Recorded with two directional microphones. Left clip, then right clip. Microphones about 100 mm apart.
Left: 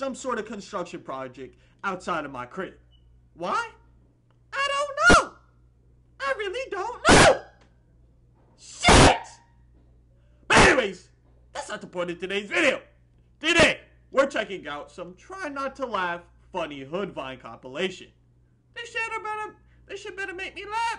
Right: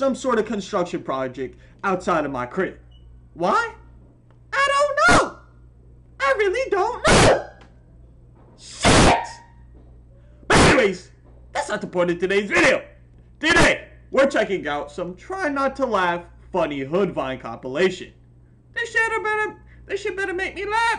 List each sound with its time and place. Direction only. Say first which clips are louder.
0.0 s speech: right 9 dB; 25° left (ahead or behind)
4.5 s a sound: right 8 dB; 20° left (ahead or behind)
6.1 s speech: right 9 dB; 20° left (ahead or behind)
8.5 s dog: even; 15° left (ahead or behind)
10.4 s sneeze: right 2 dB; 20° left (ahead or behind)
11.5 s speech: right 9 dB; 20° left (ahead or behind)